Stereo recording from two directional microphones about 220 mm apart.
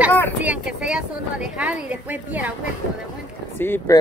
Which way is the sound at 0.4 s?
5° right (ahead or behind).